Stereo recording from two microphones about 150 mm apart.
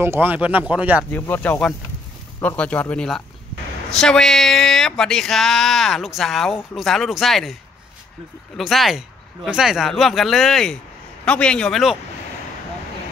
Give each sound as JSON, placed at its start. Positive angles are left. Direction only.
{"t": 0.0, "sound": "speech", "side_deg": -15}
{"t": 1.1, "sound": "speech", "side_deg": 15}
{"t": 8.5, "sound": "speech", "side_deg": 0}